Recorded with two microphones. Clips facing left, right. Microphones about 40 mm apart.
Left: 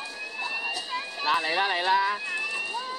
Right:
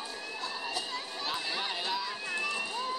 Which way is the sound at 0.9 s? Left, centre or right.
Left.